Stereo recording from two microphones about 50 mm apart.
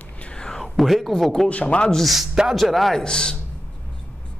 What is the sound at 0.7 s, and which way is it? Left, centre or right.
Speech, centre.